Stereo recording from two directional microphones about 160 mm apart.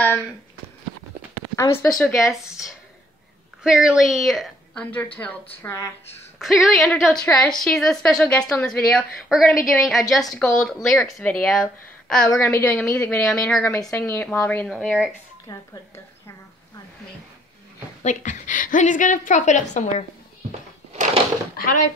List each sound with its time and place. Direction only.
1.6 s a woman's voice: 15° left (ahead or behind)
2.0 s a woman's voice: centre (ahead or behind); by 5.9 s 15° left (ahead or behind)
6.4 s a woman's voice: centre (ahead or behind)
12.3 s a woman's voice: 15° left (ahead or behind)
13.6 s a woman's voice: 15° left (ahead or behind)
14.7 s a woman's voice: centre (ahead or behind)
15.4 s a woman's voice: 20° left (ahead or behind)
18.0 s a woman's voice: 50° left (ahead or behind)
20.9 s a sound: 40° right (ahead or behind)
21.5 s speech: 60° left (ahead or behind)